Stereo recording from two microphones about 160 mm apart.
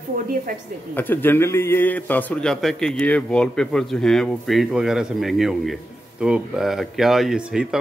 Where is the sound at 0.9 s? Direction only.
10° left (ahead or behind).